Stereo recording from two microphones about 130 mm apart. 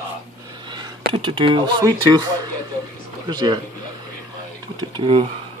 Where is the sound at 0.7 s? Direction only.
40° right (ahead or behind).